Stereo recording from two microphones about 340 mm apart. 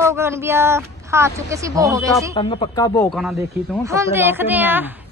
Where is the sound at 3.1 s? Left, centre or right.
Centre.